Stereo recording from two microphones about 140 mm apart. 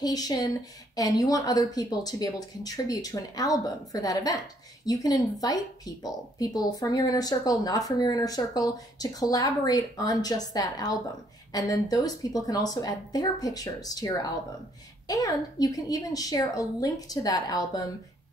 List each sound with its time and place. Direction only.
0.0 s speech: 30° left (ahead or behind)